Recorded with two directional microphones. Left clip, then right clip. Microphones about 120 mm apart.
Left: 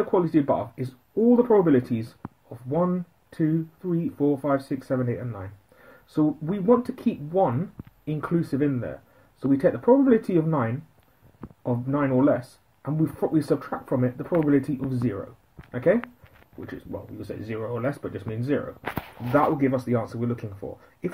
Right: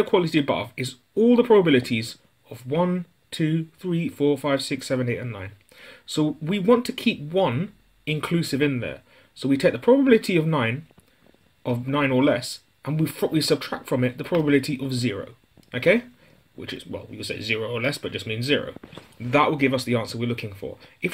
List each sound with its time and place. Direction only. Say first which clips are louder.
0.1 s speech: right 1 dB; 35° right (ahead or behind)
15.7 s speech: right 2 dB; 30° right (ahead or behind)